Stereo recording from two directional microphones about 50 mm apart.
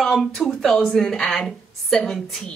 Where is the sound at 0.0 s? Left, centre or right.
Centre.